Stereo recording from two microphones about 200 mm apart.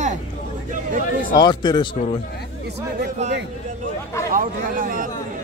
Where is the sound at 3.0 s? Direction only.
40° right (ahead or behind).